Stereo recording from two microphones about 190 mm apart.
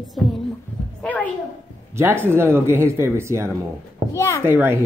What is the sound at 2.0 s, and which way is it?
Speech, 10° right (ahead or behind).